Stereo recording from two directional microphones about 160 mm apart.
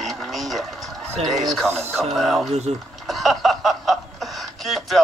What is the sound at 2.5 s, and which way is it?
Speech, 45° right (ahead or behind).